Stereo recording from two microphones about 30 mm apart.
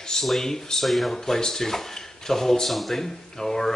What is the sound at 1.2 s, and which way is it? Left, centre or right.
Speech, centre.